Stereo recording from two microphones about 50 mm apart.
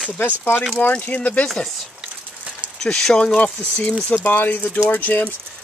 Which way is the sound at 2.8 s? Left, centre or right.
Centre.